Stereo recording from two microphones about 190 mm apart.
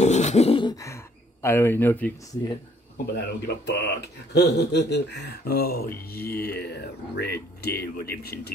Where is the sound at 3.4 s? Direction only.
60° left (ahead or behind).